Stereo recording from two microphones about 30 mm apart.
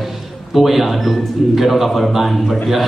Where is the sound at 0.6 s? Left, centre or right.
Centre.